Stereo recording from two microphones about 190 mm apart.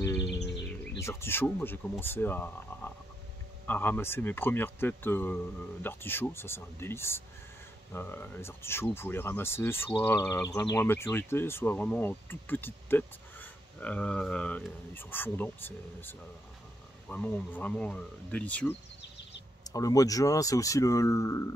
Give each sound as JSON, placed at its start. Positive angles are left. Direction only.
{"t": 0.0, "sound": "music", "side_deg": 15}
{"t": 0.9, "sound": "speech", "side_deg": 15}
{"t": 19.6, "sound": "speech", "side_deg": 20}